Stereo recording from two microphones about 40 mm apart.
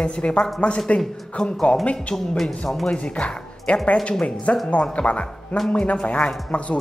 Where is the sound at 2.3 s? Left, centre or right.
Centre.